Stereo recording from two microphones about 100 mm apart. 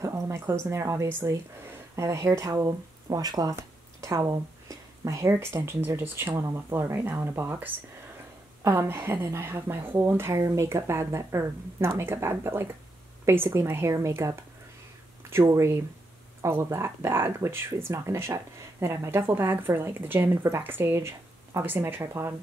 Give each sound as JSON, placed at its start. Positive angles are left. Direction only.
{"t": 0.0, "sound": "speech", "side_deg": -30}
{"t": 8.7, "sound": "speech", "side_deg": -25}
{"t": 15.5, "sound": "speech", "side_deg": -25}